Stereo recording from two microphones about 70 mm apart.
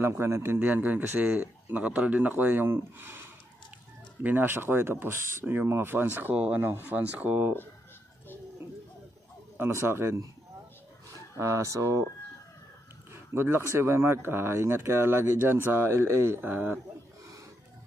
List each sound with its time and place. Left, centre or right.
0.0 s speech: right
6.3 s speech: centre
9.6 s speech: right
11.3 s speech: right
13.3 s speech: right